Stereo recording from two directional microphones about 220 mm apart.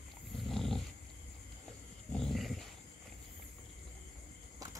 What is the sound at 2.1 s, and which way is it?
Dog, centre (ahead or behind).